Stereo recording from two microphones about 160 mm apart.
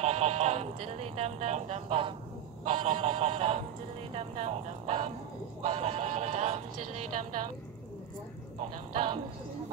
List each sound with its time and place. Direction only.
0.0 s speech: 40° right (ahead or behind)
2.6 s speech: 45° right (ahead or behind)
8.9 s speech: 35° right (ahead or behind)